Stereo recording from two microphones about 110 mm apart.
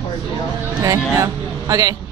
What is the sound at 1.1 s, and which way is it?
Speech, 30° right (ahead or behind).